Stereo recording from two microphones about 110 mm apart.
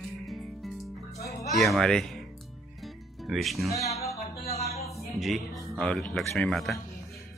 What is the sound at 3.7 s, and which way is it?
Music, 30° left (ahead or behind).